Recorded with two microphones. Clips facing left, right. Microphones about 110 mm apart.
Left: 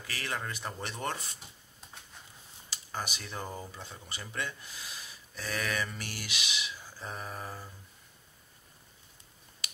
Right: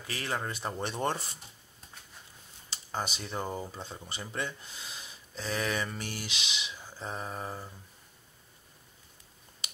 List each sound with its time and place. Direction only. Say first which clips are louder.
0.0 s speech: right 3 dB; 25° right (ahead or behind)
2.7 s speech: right 3 dB; 25° right (ahead or behind)